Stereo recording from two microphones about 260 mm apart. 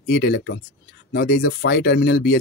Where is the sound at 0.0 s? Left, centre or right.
Left.